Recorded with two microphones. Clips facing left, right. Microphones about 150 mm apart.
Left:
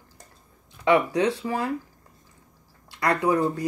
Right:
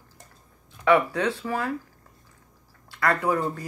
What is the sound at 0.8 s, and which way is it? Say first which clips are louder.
Speech: left 1 dB; 20° left (ahead or behind).